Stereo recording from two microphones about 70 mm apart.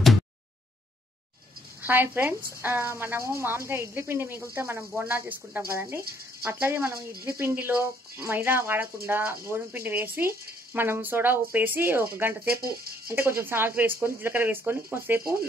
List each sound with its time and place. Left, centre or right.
1.8 s a woman's voice: right